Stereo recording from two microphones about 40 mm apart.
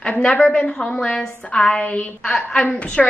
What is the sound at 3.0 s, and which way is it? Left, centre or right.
Speech, centre.